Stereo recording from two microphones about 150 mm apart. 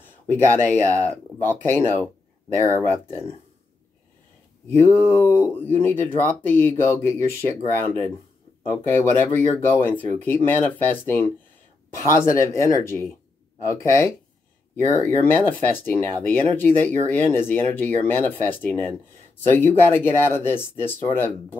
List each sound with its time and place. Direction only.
0.6 s speech: 15° left (ahead or behind)
4.6 s speech: 15° left (ahead or behind)